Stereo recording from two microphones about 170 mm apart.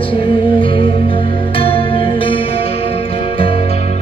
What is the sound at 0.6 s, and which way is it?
Music, 30° left (ahead or behind).